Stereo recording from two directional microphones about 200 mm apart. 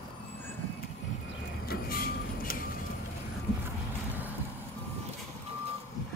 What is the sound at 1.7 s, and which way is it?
Vehicle, 50° left (ahead or behind).